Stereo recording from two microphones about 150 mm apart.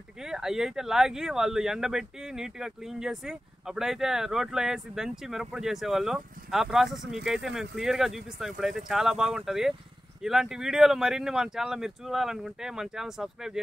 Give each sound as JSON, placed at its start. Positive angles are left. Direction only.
{"t": 0.2, "sound": "speech", "side_deg": -5}